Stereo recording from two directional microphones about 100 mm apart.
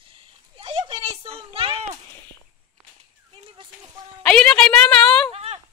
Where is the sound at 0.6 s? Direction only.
75° right (ahead or behind).